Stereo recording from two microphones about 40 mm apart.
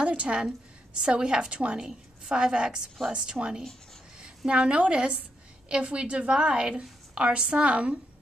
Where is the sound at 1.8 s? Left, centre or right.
Centre.